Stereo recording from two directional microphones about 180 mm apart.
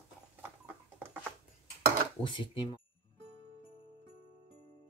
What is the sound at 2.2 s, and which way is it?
Speech, 25° left (ahead or behind).